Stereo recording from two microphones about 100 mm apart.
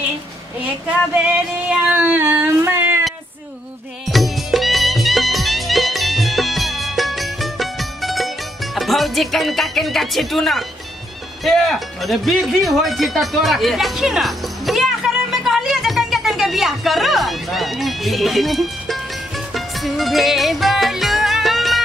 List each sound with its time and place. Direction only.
1.1 s music: 15° right (ahead or behind)
2.0 s a sound: 20° right (ahead or behind)
4.0 s music: centre (ahead or behind)
8.7 s speech: centre (ahead or behind)
11.4 s music: centre (ahead or behind)